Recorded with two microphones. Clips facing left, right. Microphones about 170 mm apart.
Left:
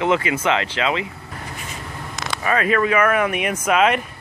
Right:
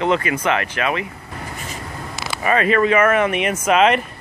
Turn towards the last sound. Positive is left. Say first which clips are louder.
# right 2 dB
turn(degrees=5)  # may be behind; listen again after turning